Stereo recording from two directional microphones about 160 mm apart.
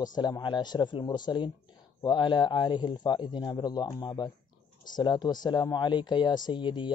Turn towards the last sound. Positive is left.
turn(degrees=30)  # may be behind; listen again after turning